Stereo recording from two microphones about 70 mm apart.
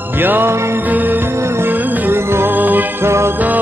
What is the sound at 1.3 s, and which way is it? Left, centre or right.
Music, right.